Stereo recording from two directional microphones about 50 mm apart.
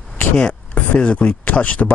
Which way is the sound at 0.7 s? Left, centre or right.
Left.